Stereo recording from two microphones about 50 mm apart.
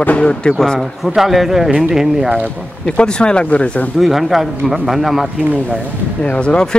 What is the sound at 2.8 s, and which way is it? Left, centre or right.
Speech, centre.